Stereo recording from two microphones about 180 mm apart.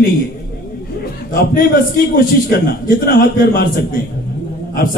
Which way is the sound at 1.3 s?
50° left (ahead or behind).